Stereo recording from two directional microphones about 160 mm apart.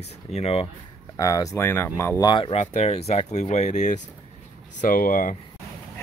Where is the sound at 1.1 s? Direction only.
20° left (ahead or behind).